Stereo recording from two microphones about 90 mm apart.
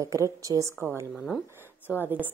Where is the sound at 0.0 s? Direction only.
35° right (ahead or behind).